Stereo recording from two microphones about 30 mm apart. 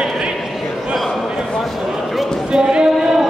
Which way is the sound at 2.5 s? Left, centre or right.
Right.